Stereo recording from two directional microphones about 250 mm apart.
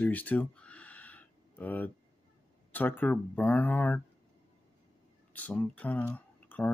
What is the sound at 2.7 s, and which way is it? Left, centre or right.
Speech, centre.